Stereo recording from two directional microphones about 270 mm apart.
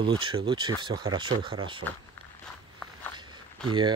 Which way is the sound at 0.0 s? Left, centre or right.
Centre.